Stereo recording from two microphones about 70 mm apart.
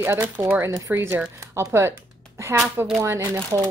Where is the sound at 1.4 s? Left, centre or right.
Right.